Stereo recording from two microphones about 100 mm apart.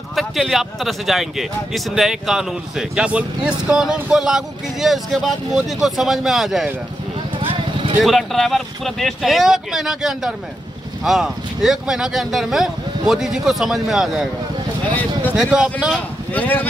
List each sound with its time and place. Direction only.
0.1 s speech: centre (ahead or behind)
8.0 s speech: centre (ahead or behind)
15.3 s speech: 5° right (ahead or behind)
16.3 s speech: 20° left (ahead or behind)